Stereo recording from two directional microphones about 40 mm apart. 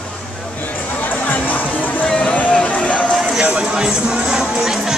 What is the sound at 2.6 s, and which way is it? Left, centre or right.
Music, left.